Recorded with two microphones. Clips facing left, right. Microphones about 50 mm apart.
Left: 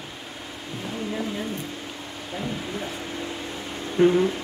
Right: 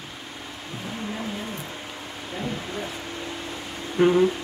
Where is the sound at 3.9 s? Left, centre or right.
Centre.